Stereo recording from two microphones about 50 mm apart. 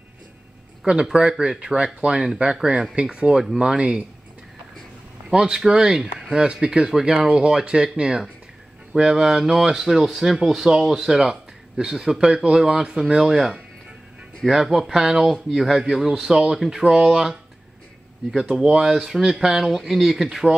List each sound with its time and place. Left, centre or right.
1.0 s speech: centre
5.3 s speech: centre